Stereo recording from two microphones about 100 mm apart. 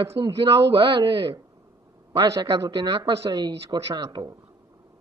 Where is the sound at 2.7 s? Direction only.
55° right (ahead or behind).